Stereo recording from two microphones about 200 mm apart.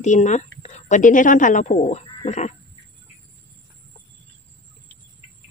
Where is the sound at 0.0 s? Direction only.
35° left (ahead or behind).